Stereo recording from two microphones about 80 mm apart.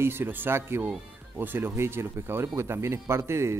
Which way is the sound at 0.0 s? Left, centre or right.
Right.